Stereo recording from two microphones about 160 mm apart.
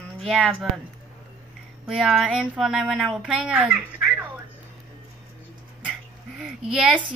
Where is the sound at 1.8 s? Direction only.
5° right (ahead or behind).